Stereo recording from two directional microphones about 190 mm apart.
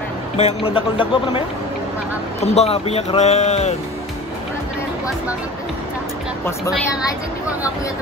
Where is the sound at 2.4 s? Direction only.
35° left (ahead or behind).